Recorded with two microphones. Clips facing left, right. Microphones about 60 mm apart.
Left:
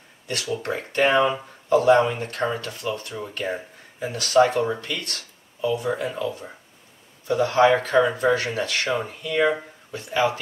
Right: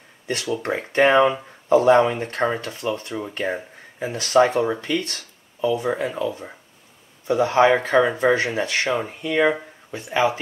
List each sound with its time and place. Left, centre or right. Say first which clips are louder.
0.6 s speech: right 4 dB; right